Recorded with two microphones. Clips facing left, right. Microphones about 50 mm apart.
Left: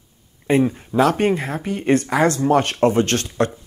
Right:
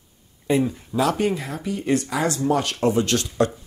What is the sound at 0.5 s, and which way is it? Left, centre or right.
Speech, left.